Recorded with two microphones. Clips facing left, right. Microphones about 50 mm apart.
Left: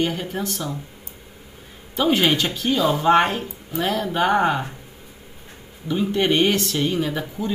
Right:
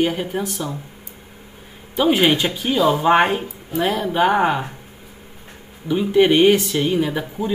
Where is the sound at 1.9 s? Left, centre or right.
Centre.